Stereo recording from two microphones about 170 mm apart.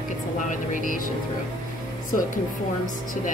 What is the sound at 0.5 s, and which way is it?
Speech, 50° left (ahead or behind).